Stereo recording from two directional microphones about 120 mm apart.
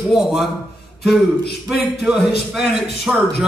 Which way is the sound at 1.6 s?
5° right (ahead or behind).